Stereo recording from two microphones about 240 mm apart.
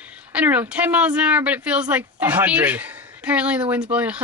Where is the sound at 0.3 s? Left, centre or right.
Centre.